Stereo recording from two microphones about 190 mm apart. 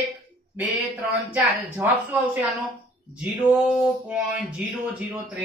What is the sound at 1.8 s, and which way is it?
Speech, 10° right (ahead or behind).